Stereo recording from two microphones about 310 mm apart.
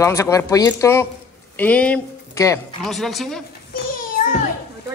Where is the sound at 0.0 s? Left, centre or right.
Centre.